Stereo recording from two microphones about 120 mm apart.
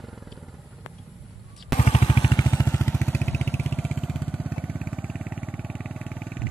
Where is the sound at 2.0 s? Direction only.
45° left (ahead or behind).